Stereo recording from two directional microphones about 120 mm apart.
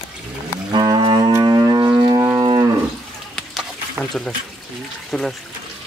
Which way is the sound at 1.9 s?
30° right (ahead or behind).